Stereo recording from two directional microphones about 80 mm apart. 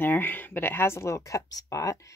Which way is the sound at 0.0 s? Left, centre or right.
Left.